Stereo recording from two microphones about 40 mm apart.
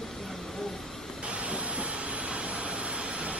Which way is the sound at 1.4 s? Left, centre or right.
Right.